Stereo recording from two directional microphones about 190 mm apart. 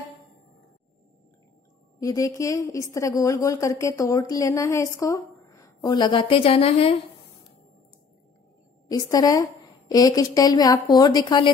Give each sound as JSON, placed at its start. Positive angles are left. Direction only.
{"t": 2.0, "sound": "a woman's voice", "side_deg": 15}
{"t": 8.8, "sound": "a woman's voice", "side_deg": 20}